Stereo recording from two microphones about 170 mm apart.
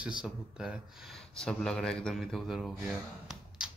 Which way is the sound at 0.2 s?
5° right (ahead or behind).